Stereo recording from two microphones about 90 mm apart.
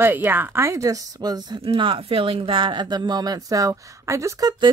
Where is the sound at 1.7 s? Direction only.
70° right (ahead or behind); by 4.4 s 35° right (ahead or behind).